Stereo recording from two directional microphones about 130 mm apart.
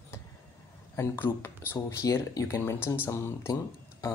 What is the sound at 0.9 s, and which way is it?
Speech, 20° left (ahead or behind).